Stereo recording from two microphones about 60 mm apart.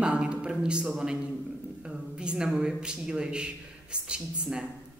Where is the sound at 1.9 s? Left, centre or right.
Centre.